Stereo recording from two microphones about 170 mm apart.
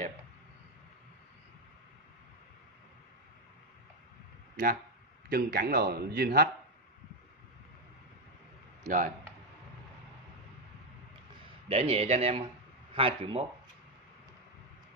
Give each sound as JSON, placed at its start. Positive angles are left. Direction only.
{"t": 5.3, "sound": "a man's voice", "side_deg": -60}
{"t": 8.8, "sound": "speech", "side_deg": -50}
{"t": 11.7, "sound": "a man's voice", "side_deg": -35}